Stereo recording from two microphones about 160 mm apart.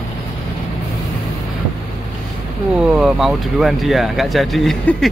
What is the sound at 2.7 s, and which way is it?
Speech, 5° right (ahead or behind).